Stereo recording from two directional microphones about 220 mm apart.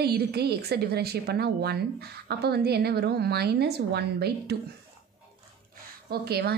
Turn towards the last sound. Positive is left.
turn(degrees=-45)  # may be behind; listen again after turning